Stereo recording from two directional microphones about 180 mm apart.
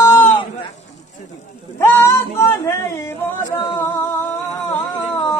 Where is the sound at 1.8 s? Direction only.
15° left (ahead or behind).